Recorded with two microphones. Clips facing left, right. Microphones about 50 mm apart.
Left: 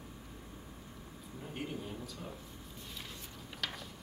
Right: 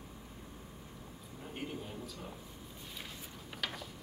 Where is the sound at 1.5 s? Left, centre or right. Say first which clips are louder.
Left 1 dB; centre.